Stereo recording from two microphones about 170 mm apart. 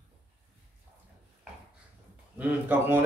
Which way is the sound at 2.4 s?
10° right (ahead or behind).